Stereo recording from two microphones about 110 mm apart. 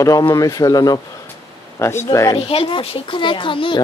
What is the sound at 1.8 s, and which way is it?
Speech, 25° left (ahead or behind).